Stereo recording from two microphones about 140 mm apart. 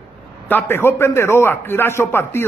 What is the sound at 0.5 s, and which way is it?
A man's voice, 15° left (ahead or behind).